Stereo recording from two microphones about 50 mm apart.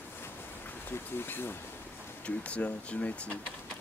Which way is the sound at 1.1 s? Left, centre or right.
Left.